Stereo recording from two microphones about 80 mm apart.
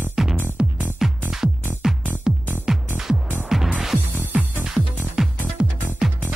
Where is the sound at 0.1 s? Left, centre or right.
Centre.